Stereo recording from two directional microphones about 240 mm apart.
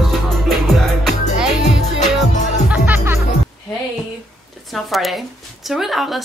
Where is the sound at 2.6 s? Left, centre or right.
Centre.